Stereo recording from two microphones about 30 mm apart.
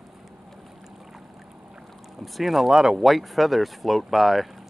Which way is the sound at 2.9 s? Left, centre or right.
Centre.